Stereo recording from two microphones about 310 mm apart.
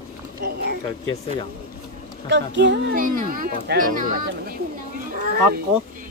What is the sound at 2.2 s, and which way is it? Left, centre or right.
Speech, right.